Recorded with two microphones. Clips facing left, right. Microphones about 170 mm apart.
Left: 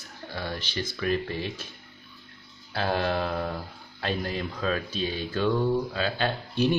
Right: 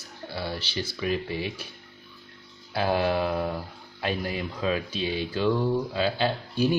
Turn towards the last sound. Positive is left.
turn(degrees=-10)  # may be behind; listen again after turning